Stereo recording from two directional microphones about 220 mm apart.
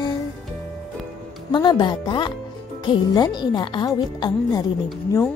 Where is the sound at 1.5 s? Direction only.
20° left (ahead or behind).